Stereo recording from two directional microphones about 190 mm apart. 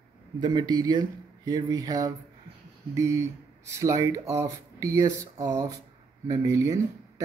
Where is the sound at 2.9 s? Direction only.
15° right (ahead or behind).